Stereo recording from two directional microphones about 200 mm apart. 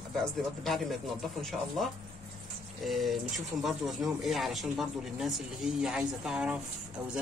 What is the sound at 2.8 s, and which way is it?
Speech, centre (ahead or behind).